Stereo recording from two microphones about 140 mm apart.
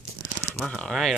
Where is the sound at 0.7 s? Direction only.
5° left (ahead or behind).